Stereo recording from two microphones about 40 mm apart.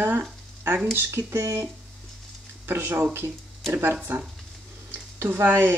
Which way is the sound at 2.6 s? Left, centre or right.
Right.